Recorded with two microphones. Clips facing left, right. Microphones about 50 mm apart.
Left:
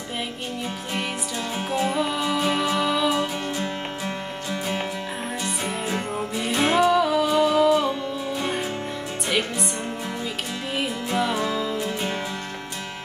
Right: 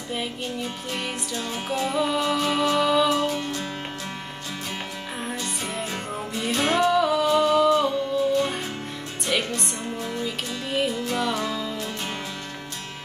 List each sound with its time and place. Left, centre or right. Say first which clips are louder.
0.9 s music: left 2 dB; centre
3.2 s music: even; centre
5.9 s music: left 4 dB; centre
9.3 s music: even; centre